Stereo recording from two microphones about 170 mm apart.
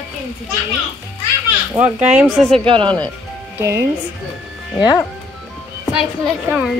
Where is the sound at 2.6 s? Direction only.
30° right (ahead or behind).